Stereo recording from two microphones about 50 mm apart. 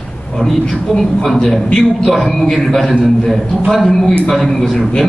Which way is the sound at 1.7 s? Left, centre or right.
Centre.